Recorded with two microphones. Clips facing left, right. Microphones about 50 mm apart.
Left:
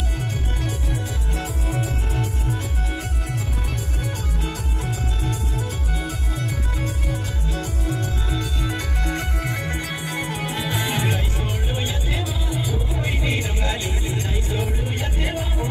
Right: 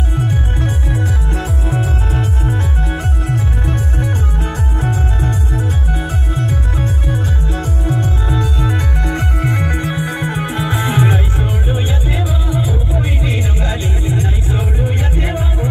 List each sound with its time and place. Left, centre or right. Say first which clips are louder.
0.3 s music: right 8 dB; right
2.9 s music: right 8 dB; right
6.0 s music: right 7 dB; right
9.9 s music: right 7 dB; right
14.1 s music: right 6 dB; right